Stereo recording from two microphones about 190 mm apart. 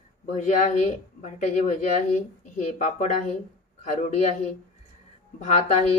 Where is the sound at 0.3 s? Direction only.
40° left (ahead or behind).